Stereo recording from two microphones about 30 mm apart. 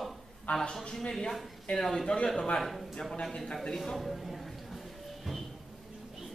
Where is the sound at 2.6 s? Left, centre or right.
Centre.